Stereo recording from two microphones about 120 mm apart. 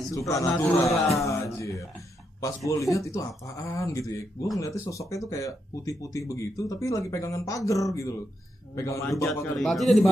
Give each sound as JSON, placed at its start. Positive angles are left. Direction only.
{"t": 0.1, "sound": "speech", "side_deg": 30}
{"t": 9.6, "sound": "a man's voice", "side_deg": 0}